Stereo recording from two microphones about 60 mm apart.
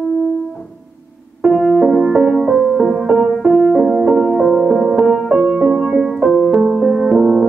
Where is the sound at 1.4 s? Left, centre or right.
Centre.